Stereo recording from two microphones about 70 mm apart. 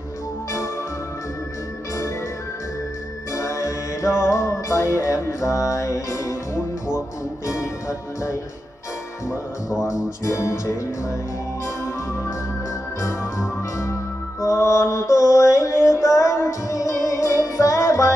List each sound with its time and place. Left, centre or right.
3.3 s music: left
9.7 s speech: centre
10.2 s music: left
13.0 s music: left
14.4 s mantra: left